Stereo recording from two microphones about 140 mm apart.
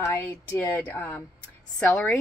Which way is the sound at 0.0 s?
15° left (ahead or behind).